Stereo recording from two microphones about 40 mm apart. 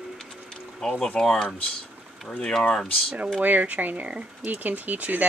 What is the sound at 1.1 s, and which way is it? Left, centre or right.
Speech, centre.